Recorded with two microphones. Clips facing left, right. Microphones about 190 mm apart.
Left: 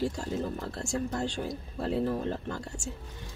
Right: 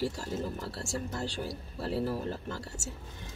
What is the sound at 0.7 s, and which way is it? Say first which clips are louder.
Speech: left 4 dB; 50° left (ahead or behind).